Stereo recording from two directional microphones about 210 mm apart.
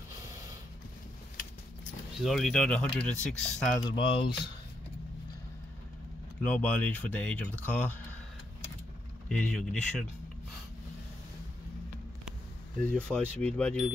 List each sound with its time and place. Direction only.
2.2 s speech: centre (ahead or behind)
3.9 s speech: 25° left (ahead or behind)
6.4 s speech: 5° left (ahead or behind)
9.3 s speech: 5° left (ahead or behind)
12.8 s speech: 5° left (ahead or behind)